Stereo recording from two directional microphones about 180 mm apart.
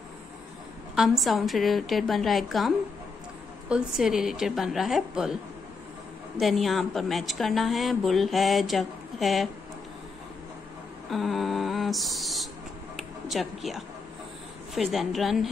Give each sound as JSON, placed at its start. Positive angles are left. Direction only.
{"t": 0.9, "sound": "a woman's voice", "side_deg": 0}
{"t": 6.4, "sound": "a woman's voice", "side_deg": 0}
{"t": 11.1, "sound": "a sound", "side_deg": 0}
{"t": 12.9, "sound": "music", "side_deg": 0}
{"t": 14.7, "sound": "a woman's voice", "side_deg": 0}